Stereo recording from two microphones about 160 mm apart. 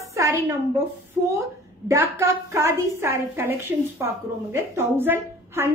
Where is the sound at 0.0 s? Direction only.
20° right (ahead or behind).